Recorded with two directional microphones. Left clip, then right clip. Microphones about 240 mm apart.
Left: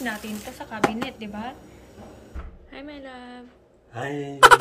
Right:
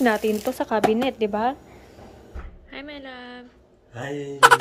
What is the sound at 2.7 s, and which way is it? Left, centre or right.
A woman's voice, centre.